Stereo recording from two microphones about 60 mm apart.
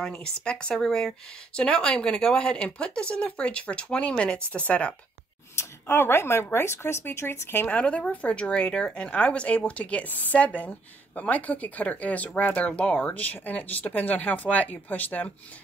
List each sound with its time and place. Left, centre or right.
0.0 s speech: centre
5.6 s speech: left
7.6 s speech: left